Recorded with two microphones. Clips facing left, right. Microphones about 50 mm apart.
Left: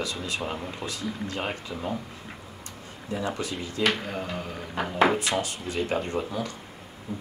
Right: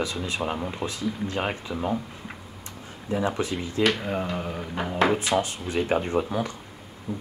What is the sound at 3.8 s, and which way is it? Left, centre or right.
Speech, centre.